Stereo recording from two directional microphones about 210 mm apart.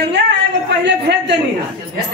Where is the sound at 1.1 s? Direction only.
50° right (ahead or behind).